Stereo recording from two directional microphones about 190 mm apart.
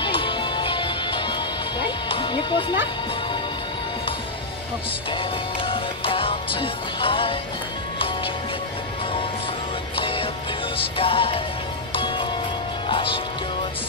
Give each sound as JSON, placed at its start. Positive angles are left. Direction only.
{"t": 0.0, "sound": "music", "side_deg": 25}
{"t": 5.1, "sound": "music", "side_deg": 30}
{"t": 9.9, "sound": "music", "side_deg": 30}
{"t": 12.8, "sound": "speech", "side_deg": 25}